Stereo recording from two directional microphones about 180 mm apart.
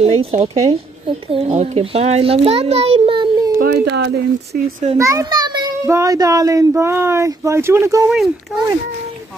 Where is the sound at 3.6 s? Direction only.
70° right (ahead or behind).